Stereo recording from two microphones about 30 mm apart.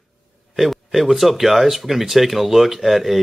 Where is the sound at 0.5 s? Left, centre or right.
Centre.